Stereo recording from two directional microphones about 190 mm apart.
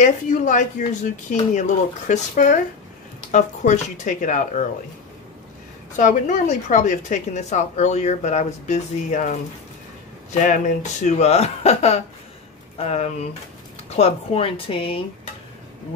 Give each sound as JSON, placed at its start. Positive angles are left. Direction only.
{"t": 0.0, "sound": "a woman's voice", "side_deg": 40}
{"t": 5.9, "sound": "a woman's voice", "side_deg": 40}
{"t": 10.4, "sound": "a woman's voice", "side_deg": 40}